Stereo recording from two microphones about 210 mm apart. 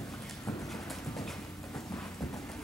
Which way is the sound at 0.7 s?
Centre (ahead or behind).